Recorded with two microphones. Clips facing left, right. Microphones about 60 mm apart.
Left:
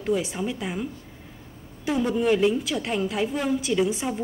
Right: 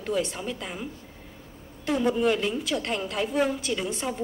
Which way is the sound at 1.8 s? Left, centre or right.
Centre.